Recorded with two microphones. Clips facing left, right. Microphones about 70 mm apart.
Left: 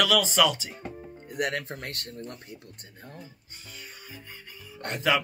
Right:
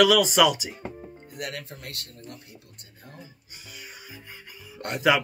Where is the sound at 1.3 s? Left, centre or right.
Left.